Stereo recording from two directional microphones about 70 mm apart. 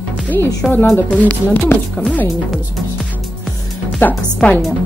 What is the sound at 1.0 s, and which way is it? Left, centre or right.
A woman's voice, left.